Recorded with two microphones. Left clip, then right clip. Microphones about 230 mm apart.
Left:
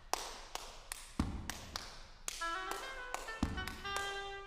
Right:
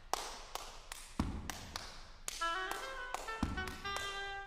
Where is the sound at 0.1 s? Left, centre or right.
Centre.